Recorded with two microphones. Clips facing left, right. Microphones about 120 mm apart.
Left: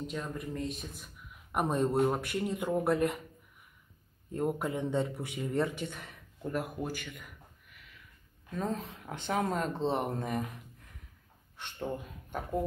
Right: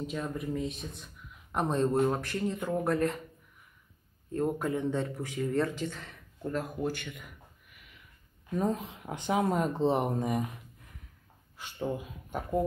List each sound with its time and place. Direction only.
0.0 s speech: centre (ahead or behind); by 3.2 s 15° left (ahead or behind)
4.3 s speech: 15° left (ahead or behind); by 7.2 s centre (ahead or behind)
8.5 s speech: 15° right (ahead or behind)
11.5 s speech: 5° right (ahead or behind)